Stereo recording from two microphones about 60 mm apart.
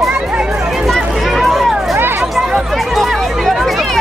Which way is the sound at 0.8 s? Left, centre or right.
Centre.